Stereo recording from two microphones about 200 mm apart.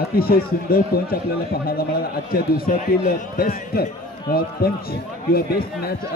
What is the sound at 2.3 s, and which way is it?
A man's voice, 45° left (ahead or behind).